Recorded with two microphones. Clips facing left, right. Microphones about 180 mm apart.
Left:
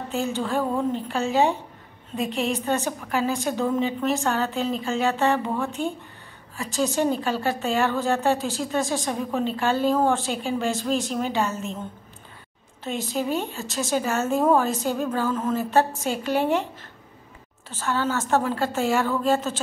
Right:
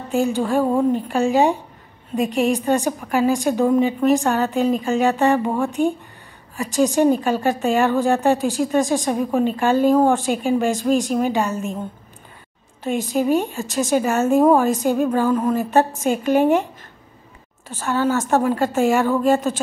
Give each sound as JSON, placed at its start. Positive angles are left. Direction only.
{"t": 0.1, "sound": "a woman's voice", "side_deg": -15}
{"t": 12.8, "sound": "a woman's voice", "side_deg": -15}
{"t": 16.1, "sound": "a woman's voice", "side_deg": -50}
{"t": 17.6, "sound": "a woman's voice", "side_deg": -15}